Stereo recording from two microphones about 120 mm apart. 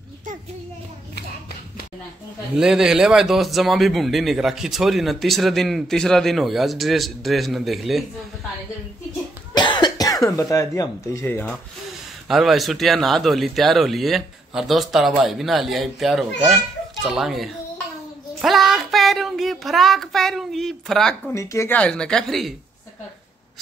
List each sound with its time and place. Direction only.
2.5 s a man's voice: 5° right (ahead or behind)
9.5 s cough: 40° left (ahead or behind); by 11.5 s 15° left (ahead or behind)
12.3 s a man's voice: centre (ahead or behind)
18.4 s child singing: centre (ahead or behind)
21.3 s speech: 25° left (ahead or behind)
21.7 s a man's voice: 10° left (ahead or behind)